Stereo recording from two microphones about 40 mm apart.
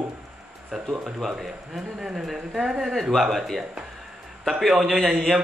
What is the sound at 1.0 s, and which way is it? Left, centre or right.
Speech, centre.